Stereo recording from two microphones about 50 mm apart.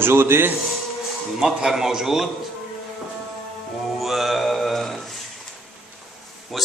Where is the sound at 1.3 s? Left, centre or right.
Centre.